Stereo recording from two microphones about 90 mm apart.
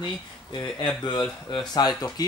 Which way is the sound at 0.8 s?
55° left (ahead or behind).